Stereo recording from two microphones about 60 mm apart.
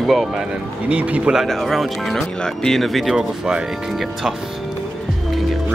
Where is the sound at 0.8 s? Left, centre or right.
Right.